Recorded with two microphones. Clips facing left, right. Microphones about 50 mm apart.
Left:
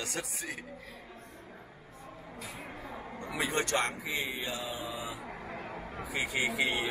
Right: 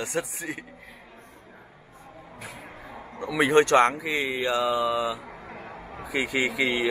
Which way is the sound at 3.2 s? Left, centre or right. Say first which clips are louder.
Right 13 dB; right.